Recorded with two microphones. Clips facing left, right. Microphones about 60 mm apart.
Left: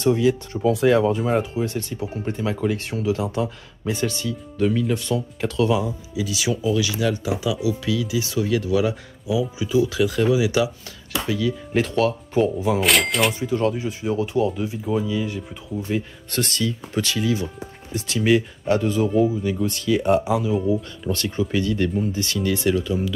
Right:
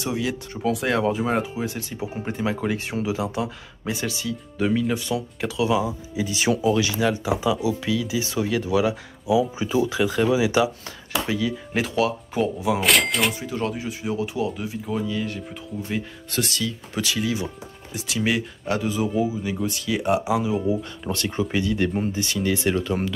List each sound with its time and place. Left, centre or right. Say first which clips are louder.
0.0 s speech: left 8 dB; centre
6.1 s speech: right 2 dB; right
7.9 s speech: left 1 dB; centre
8.2 s speech: left 2 dB; right
9.6 s speech: left 2 dB; right
11.3 s speech: left 6 dB; centre